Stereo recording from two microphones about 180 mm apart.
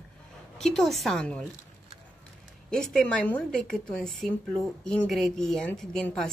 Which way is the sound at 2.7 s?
5° left (ahead or behind).